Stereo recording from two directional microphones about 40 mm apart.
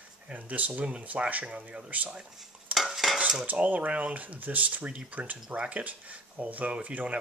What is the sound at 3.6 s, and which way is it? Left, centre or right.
Speech, right.